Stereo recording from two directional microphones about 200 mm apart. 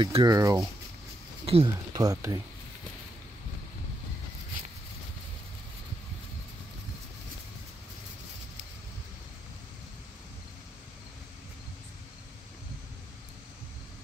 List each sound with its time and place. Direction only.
0.0 s speech: 20° right (ahead or behind)